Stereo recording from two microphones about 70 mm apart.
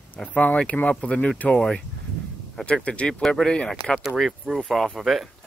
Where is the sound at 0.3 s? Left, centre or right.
Left.